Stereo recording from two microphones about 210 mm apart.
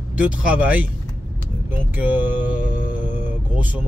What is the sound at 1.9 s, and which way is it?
Speech, 10° right (ahead or behind).